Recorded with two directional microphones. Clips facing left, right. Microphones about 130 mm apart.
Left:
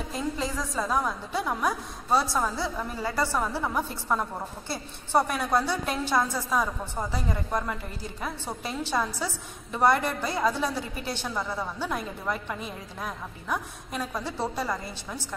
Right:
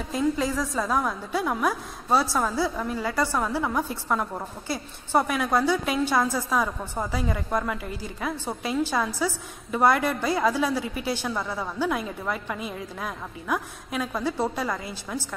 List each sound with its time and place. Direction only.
0.1 s a woman's voice: centre (ahead or behind)
3.0 s a woman's voice: 25° left (ahead or behind)
3.3 s a woman's voice: centre (ahead or behind)